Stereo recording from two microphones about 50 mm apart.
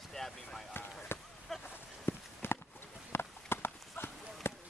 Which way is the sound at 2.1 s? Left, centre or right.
Left.